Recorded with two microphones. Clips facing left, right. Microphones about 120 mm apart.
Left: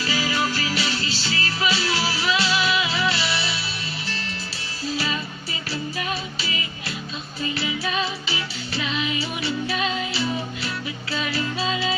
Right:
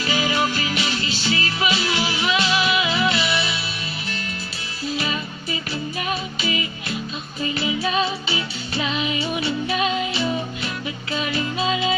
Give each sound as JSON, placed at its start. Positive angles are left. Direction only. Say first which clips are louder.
{"t": 0.0, "sound": "music", "louder": "right 3 dB", "side_deg": -20}
{"t": 7.5, "sound": "music", "louder": "right 5 dB", "side_deg": -25}